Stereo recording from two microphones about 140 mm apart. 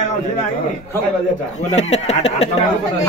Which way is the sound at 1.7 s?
50° left (ahead or behind).